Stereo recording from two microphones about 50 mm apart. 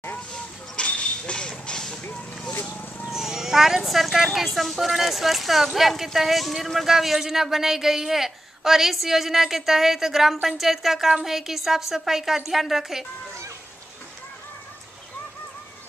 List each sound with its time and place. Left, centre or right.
0.3 s a sound: left
1.7 s vehicle: centre
2.6 s vehicle: left
3.1 s speech: centre